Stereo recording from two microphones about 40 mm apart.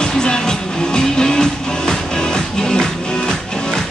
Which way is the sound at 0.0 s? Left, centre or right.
Centre.